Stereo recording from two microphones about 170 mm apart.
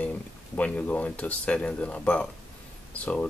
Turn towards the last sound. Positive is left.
turn(degrees=10)  # may be behind; listen again after turning